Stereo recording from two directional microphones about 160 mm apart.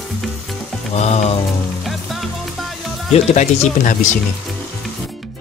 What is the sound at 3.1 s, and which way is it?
Speech, 45° left (ahead or behind).